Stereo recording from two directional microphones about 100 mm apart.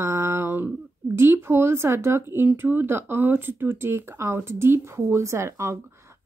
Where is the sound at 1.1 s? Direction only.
25° right (ahead or behind).